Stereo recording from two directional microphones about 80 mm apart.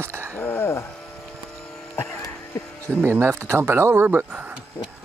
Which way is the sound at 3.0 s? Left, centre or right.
Right.